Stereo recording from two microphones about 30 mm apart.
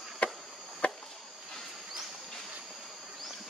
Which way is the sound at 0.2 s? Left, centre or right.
Left.